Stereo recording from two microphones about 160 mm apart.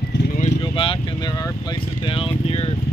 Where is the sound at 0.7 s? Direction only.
30° left (ahead or behind).